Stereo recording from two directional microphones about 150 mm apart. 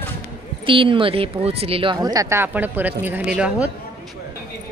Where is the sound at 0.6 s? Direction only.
35° right (ahead or behind).